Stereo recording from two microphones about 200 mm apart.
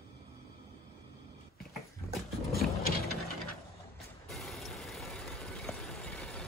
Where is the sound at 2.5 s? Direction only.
50° left (ahead or behind).